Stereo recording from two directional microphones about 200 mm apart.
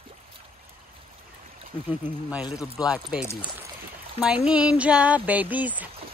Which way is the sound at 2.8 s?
20° left (ahead or behind).